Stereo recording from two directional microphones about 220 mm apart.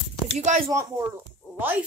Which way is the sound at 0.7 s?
15° right (ahead or behind).